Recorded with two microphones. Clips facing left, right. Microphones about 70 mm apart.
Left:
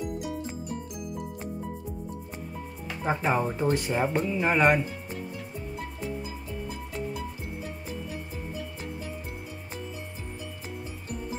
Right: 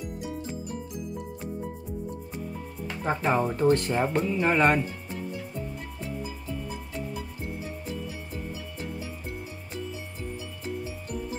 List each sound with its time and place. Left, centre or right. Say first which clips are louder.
0.0 s music: left 3 dB; centre
3.0 s speech: right 1 dB; centre